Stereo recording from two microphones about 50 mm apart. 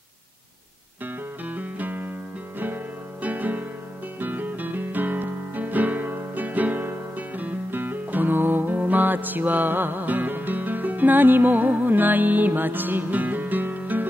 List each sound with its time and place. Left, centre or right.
1.0 s music: right